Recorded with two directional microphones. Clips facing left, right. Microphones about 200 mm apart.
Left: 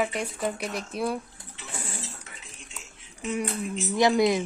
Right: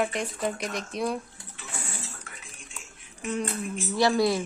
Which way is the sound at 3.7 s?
20° left (ahead or behind).